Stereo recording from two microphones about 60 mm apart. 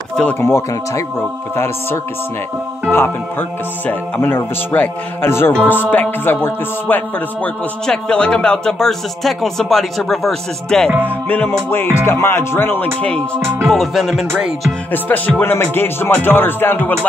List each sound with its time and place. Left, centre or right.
0.1 s a sound: centre
0.4 s music: left
5.9 s music: left
7.8 s speech: centre
11.1 s music: left
11.7 s music: left
12.8 s speech: centre
13.7 s music: centre
14.9 s music: left
15.7 s music: left